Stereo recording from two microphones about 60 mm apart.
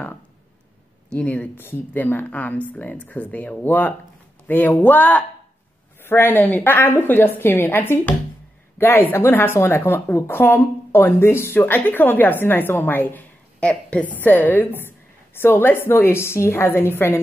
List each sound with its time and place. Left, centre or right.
1.1 s speech: centre
1.6 s a woman's voice: left
13.6 s speech: centre; by 17.2 s left